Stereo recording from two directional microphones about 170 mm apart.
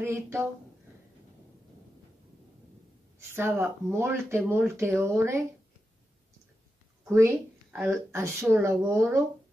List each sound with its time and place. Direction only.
0.0 s a woman's voice: 15° right (ahead or behind)
3.2 s a woman's voice: 15° right (ahead or behind)
7.1 s a woman's voice: 15° right (ahead or behind)